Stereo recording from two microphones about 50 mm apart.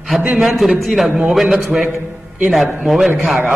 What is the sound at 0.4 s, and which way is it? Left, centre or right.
A man's voice, centre.